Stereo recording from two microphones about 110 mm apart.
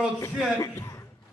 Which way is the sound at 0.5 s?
30° left (ahead or behind).